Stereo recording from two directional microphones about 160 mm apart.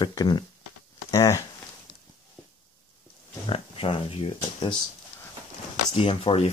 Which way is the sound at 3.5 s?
35° left (ahead or behind).